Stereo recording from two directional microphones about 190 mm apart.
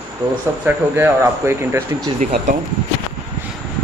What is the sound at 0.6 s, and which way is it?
Speech, 10° right (ahead or behind).